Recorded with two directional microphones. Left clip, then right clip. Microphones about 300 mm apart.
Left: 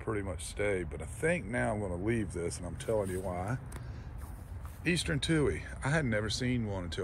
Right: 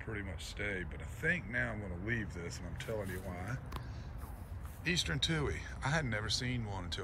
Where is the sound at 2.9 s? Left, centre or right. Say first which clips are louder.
Left 9 dB; centre.